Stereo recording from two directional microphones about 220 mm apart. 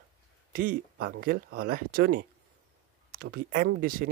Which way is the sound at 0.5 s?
40° right (ahead or behind).